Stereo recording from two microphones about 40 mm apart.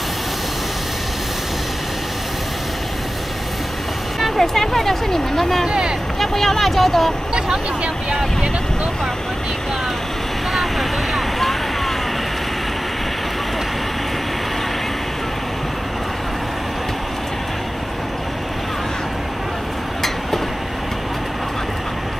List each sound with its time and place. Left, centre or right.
4.2 s speech: centre
5.7 s speech: centre
6.1 s speech: centre
7.3 s speech: right
10.5 s vehicle: centre